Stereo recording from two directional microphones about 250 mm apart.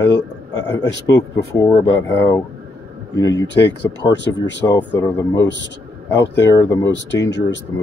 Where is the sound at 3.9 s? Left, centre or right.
Left.